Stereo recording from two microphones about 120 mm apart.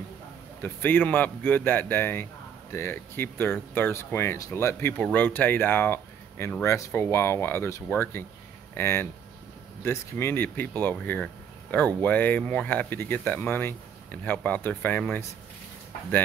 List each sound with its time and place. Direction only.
0.6 s speech: 15° left (ahead or behind)